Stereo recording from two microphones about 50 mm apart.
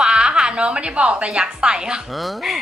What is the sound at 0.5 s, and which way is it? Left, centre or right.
A woman's voice, centre.